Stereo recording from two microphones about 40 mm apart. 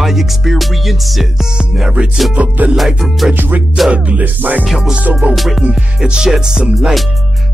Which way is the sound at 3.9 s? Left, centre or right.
Right.